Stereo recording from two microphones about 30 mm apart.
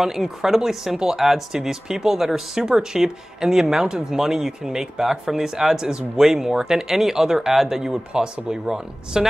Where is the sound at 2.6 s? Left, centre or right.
Right.